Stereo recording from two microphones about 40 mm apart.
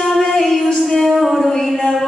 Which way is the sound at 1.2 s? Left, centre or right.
Centre.